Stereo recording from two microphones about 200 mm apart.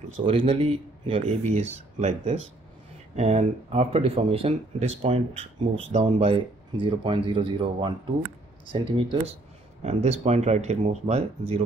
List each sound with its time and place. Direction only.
0.2 s speech: 25° right (ahead or behind)